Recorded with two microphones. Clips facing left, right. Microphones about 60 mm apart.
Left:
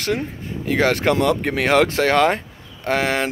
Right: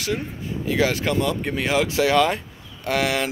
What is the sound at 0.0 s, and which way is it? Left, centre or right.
Speech, left.